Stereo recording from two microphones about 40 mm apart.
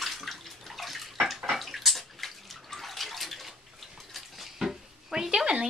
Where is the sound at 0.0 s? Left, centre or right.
Centre.